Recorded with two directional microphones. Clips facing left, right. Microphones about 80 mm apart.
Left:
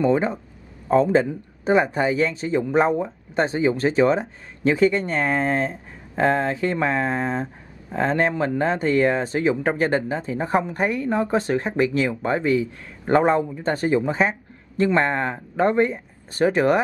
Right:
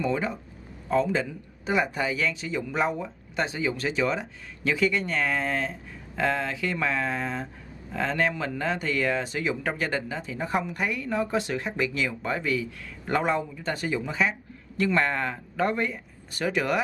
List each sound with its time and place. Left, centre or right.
0.0 s speech: left